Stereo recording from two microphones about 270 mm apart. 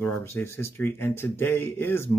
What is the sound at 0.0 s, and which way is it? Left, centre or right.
Speech, centre.